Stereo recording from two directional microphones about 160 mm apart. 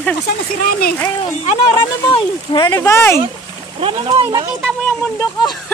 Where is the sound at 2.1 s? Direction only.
30° left (ahead or behind).